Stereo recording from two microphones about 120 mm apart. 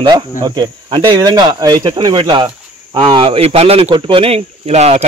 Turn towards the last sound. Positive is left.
turn(degrees=-65)  # may be behind; listen again after turning